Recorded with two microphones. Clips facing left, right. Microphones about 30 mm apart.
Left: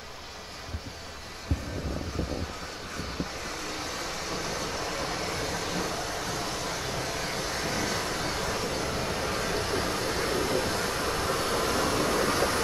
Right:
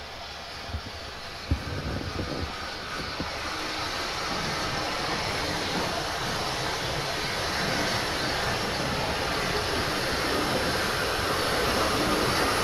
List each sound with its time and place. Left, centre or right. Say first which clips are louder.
3.0 s vehicle: right 1 dB; right